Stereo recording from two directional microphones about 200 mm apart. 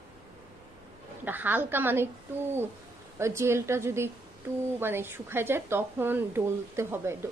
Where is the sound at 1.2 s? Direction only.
10° right (ahead or behind).